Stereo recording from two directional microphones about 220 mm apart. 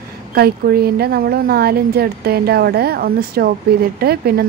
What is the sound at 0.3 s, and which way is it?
A woman's voice, 45° right (ahead or behind).